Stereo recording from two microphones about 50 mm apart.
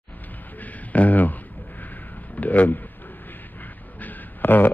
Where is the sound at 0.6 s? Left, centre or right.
Left.